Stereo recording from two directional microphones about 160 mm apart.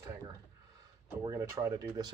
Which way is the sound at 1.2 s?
15° right (ahead or behind).